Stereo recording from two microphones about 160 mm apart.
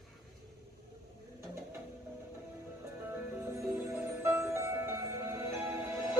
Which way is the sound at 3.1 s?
15° right (ahead or behind).